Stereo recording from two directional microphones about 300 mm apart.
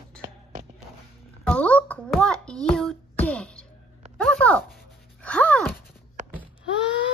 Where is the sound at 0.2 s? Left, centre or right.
Right.